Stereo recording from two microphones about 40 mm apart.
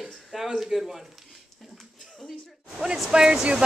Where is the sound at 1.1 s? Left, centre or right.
Centre.